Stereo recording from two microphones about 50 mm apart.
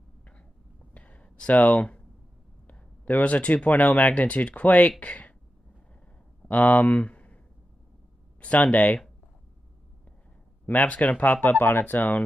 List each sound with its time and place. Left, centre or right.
0.9 s a sound: left
2.6 s speech: left
6.4 s speech: left
8.4 s speech: left
10.7 s speech: left
11.6 s speech: left